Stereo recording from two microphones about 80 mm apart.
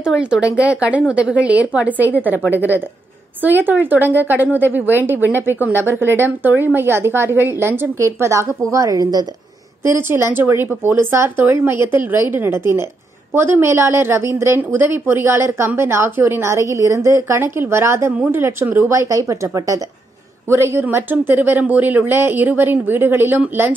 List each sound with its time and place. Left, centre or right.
0.0 s a woman's voice: centre; by 9.2 s right
9.8 s a woman's voice: right
17.4 s a woman's voice: right
19.0 s a woman's voice: right